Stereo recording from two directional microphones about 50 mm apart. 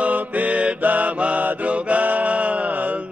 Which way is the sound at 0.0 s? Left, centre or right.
Right.